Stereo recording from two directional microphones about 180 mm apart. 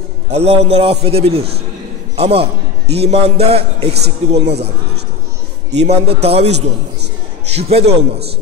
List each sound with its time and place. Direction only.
0.3 s a man's voice: 35° right (ahead or behind)
5.7 s a man's voice: 35° right (ahead or behind)